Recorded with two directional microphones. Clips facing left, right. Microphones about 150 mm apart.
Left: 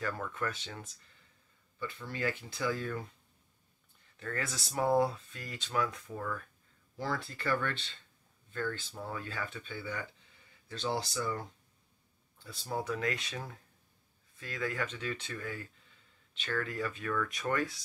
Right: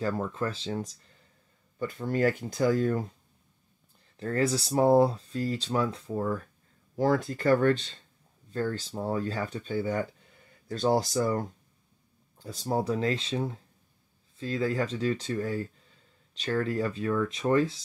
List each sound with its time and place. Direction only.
0.0 s speech: 30° right (ahead or behind)
7.0 s speech: 45° right (ahead or behind); by 17.8 s 25° right (ahead or behind)